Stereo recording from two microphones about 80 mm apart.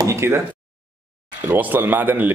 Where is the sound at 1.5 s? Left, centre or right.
Right.